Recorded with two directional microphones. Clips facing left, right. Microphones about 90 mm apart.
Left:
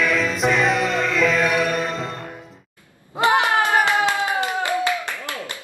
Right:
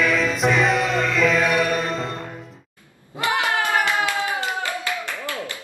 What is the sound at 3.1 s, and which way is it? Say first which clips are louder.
Clapping: left 5 dB; 25° left (ahead or behind).